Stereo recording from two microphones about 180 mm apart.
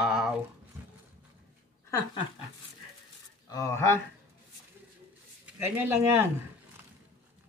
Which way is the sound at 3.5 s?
15° left (ahead or behind).